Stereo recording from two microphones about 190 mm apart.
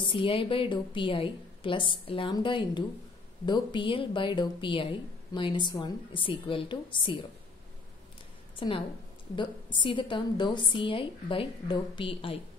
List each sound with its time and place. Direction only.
0.0 s a woman's voice: 30° left (ahead or behind)
8.5 s a woman's voice: 25° left (ahead or behind)